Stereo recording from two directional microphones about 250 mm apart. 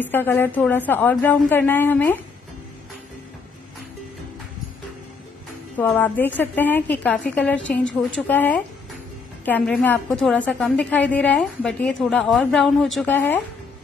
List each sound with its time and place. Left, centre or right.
0.0 s a woman's voice: centre
5.8 s a woman's voice: centre